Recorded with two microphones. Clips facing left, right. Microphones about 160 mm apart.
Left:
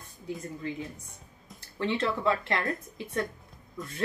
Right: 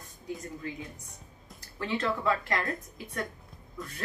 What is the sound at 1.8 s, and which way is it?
Speech, 25° left (ahead or behind).